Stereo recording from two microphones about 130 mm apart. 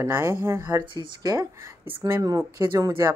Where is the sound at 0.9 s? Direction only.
30° right (ahead or behind).